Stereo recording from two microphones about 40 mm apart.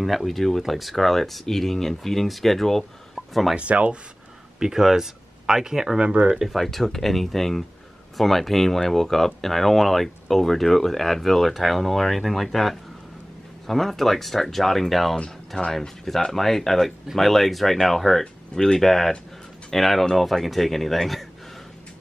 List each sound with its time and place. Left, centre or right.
0.0 s speech: centre
3.2 s a sound: centre
3.5 s speech: right
4.6 s speech: centre
5.9 s speech: right
6.5 s speech: centre